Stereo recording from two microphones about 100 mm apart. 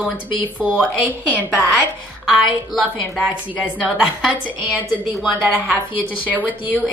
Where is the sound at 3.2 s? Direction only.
15° right (ahead or behind).